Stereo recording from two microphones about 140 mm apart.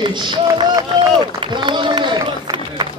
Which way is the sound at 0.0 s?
35° right (ahead or behind).